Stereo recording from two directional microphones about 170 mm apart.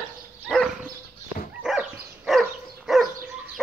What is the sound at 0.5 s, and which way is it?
Dog, centre (ahead or behind).